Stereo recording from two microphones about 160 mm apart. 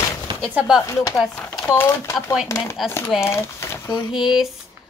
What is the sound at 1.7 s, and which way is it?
Speech, 15° left (ahead or behind).